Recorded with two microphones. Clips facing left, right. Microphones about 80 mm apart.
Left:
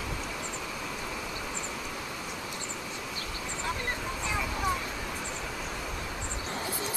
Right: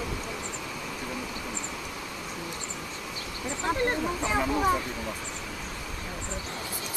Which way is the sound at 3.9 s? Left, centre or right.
Right.